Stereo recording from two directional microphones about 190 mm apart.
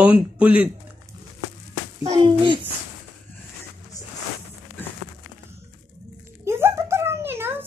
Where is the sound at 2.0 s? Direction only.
25° right (ahead or behind).